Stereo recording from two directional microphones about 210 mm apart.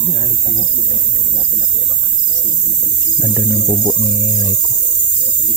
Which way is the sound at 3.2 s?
5° left (ahead or behind).